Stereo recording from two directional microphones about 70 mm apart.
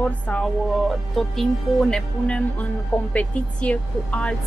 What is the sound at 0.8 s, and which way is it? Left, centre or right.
Speech, centre.